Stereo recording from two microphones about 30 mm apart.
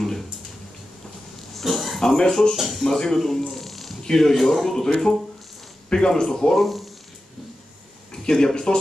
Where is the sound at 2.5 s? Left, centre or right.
Centre.